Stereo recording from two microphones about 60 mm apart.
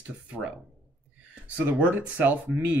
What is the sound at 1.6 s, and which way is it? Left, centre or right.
Speech, right.